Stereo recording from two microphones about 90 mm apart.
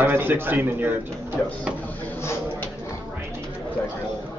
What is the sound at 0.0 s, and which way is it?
Speech, 25° right (ahead or behind).